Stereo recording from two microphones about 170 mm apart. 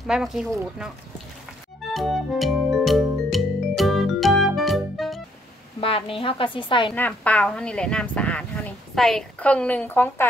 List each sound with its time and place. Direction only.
0.0 s speech: centre (ahead or behind)
1.9 s music: centre (ahead or behind)
5.8 s a woman's voice: 35° left (ahead or behind)
7.0 s speech: 10° left (ahead or behind)